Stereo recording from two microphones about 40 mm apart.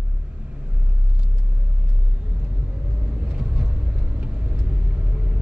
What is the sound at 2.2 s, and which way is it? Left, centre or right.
Vehicle, right.